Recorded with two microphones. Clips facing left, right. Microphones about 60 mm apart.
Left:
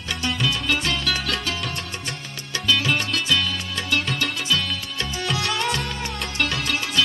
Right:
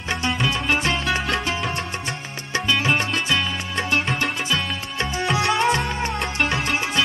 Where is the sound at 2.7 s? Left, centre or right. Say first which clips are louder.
Right 1 dB; right.